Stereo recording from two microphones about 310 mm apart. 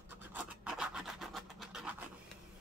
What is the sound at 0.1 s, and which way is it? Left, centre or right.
Scratch, centre.